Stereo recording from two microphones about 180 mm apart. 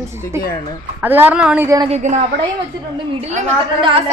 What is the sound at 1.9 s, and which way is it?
A woman's voice, 40° right (ahead or behind).